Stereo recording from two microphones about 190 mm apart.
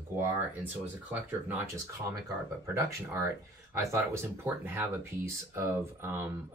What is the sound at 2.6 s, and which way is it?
Speech, 15° right (ahead or behind).